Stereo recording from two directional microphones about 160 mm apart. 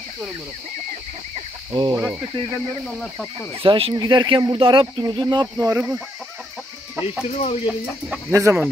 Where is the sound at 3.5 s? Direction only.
35° right (ahead or behind).